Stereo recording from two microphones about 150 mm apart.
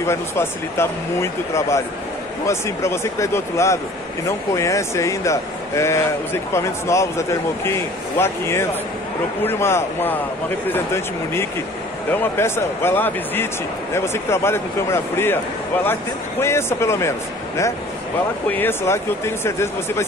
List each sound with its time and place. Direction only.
0.0 s speech: 15° left (ahead or behind)
18.5 s speech: 15° left (ahead or behind)